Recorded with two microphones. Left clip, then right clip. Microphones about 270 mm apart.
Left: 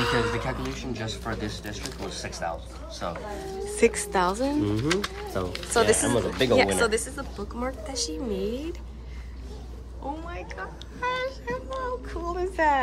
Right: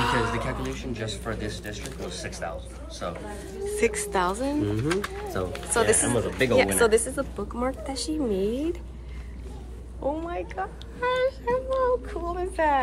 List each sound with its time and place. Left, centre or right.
0.0 s a sound: centre
0.5 s speech: left
3.6 s speech: centre
6.8 s speech: centre
10.2 s speech: centre